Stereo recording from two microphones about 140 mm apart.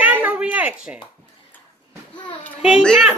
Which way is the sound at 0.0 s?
10° right (ahead or behind).